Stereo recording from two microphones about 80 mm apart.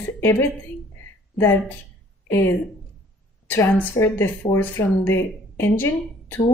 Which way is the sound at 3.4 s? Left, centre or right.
Left.